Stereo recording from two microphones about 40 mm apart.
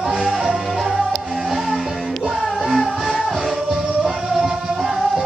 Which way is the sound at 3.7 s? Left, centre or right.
Centre.